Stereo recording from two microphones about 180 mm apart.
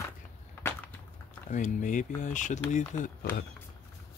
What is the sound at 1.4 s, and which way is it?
Speech, 45° left (ahead or behind).